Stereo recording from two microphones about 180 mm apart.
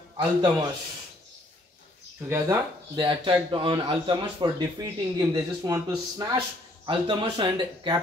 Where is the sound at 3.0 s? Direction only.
25° right (ahead or behind).